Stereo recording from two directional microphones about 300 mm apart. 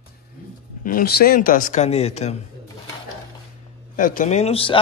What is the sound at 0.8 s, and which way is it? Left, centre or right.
Speech, left.